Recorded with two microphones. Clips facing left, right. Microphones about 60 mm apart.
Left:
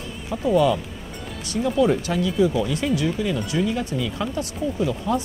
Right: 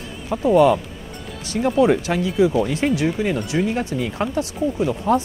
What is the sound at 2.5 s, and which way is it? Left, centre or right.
Speech, right.